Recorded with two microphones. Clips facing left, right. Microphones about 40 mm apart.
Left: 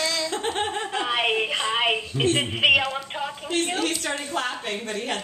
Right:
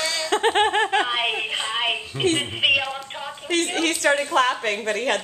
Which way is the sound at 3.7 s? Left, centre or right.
Right.